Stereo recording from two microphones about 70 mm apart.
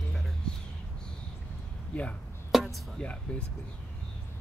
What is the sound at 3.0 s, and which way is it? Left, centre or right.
Speech, centre.